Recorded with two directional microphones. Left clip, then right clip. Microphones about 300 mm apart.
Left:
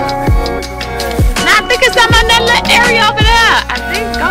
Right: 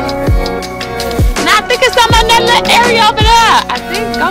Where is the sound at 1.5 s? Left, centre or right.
Centre.